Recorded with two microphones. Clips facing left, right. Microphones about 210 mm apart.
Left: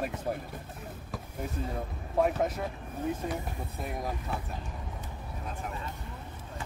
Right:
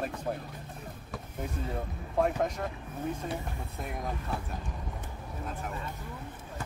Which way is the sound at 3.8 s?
Centre (ahead or behind).